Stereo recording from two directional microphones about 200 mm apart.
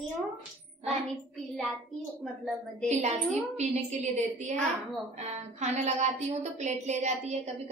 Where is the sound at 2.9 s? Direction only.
35° right (ahead or behind).